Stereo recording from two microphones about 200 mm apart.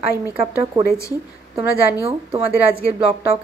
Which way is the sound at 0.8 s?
15° right (ahead or behind).